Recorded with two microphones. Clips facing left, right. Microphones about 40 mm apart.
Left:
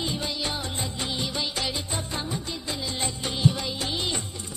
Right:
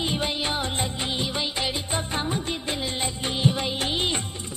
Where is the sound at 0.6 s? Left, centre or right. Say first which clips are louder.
Right 5 dB; right.